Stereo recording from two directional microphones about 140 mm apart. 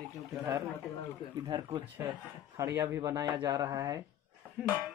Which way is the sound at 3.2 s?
10° right (ahead or behind).